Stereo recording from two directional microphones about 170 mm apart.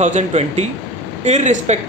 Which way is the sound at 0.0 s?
40° right (ahead or behind).